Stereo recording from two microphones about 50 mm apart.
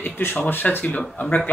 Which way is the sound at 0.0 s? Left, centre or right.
Left.